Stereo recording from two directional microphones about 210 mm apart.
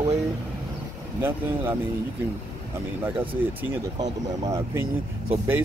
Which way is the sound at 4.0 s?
15° right (ahead or behind).